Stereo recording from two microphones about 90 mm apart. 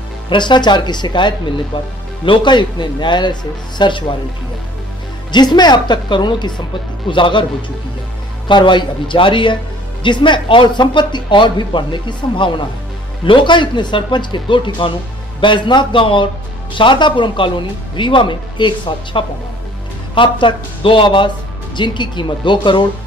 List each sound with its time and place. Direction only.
0.3 s speech: 60° left (ahead or behind)
5.3 s speech: 55° left (ahead or behind)
8.5 s speech: 60° left (ahead or behind)